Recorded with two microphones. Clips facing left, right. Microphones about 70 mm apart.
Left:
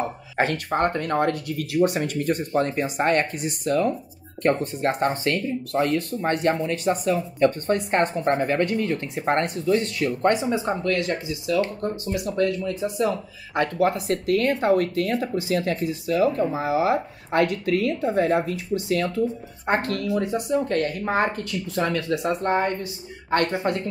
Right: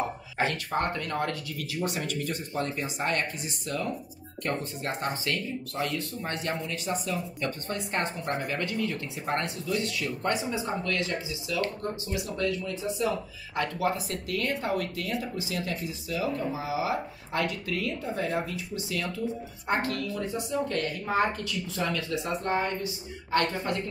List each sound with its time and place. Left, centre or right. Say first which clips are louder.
0.4 s speech: left 6 dB; left